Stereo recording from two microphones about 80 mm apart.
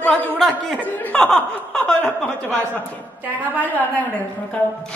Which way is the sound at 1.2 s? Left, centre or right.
Centre.